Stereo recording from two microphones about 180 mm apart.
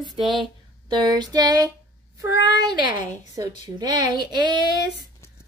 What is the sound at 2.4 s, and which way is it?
Speech, 75° left (ahead or behind).